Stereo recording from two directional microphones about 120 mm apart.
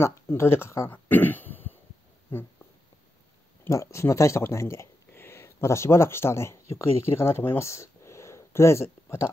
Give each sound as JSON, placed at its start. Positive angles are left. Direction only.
{"t": 0.0, "sound": "speech", "side_deg": 20}
{"t": 3.6, "sound": "speech", "side_deg": 25}